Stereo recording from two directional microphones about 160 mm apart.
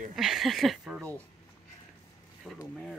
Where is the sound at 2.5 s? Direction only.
5° left (ahead or behind).